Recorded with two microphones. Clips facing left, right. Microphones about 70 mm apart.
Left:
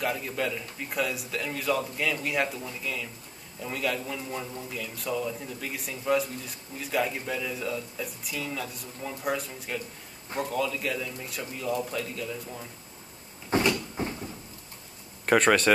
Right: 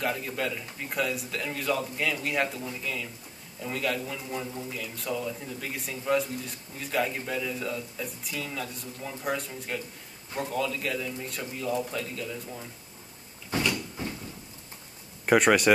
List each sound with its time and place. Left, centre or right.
0.0 s speech: centre
13.5 s cupboard open or close: left
15.2 s speech: centre